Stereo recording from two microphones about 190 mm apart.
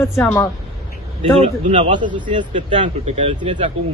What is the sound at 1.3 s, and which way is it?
Speech, 35° right (ahead or behind).